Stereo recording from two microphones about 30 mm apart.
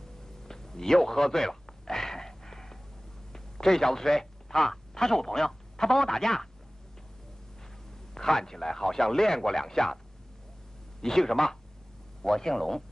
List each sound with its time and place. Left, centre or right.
0.4 s a sound: centre
3.3 s a man's voice: centre
8.1 s speech: centre
11.0 s speech: centre